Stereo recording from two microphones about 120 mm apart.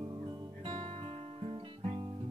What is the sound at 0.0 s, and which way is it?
Music, 40° right (ahead or behind).